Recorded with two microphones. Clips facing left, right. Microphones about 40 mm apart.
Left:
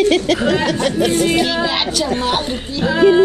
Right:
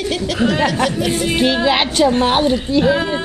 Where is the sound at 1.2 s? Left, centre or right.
Right.